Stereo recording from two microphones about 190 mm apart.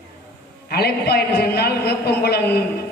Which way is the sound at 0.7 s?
55° left (ahead or behind).